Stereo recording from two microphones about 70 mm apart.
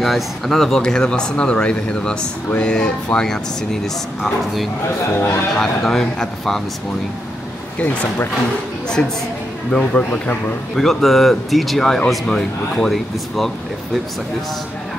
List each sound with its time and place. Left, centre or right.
0.0 s speech: centre
7.8 s speech: centre
10.8 s speech: centre